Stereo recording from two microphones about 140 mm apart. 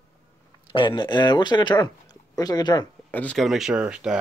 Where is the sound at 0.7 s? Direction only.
35° left (ahead or behind).